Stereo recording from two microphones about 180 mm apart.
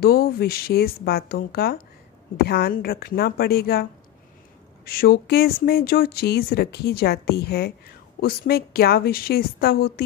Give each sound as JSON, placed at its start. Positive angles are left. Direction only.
{"t": 0.0, "sound": "speech", "side_deg": 60}
{"t": 4.8, "sound": "speech", "side_deg": 55}